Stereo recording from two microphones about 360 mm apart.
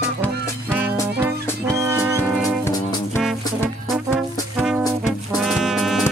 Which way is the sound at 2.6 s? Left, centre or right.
Centre.